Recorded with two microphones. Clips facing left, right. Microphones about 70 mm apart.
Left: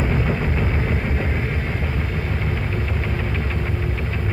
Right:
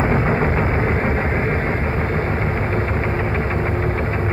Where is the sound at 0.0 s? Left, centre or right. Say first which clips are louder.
Right 5 dB; right.